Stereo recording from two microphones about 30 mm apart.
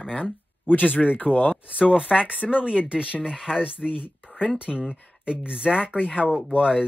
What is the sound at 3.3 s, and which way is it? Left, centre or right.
Speech, centre.